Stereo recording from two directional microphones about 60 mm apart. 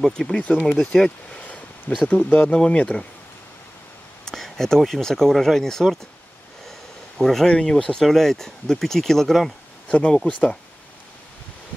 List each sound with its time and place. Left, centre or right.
0.0 s speech: centre
2.0 s speech: left
4.3 s speech: centre
7.2 s speech: centre
7.4 s speech: centre
9.8 s speech: centre